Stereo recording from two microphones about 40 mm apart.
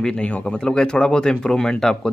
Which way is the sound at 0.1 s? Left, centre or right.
Left.